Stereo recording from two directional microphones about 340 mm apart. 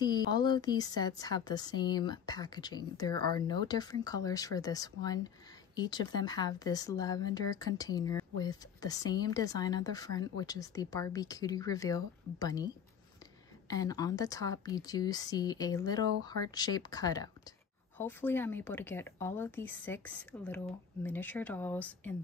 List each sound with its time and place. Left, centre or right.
0.0 s a woman's voice: centre